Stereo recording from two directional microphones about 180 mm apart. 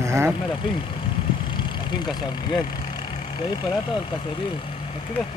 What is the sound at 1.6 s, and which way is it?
Speech, 25° left (ahead or behind).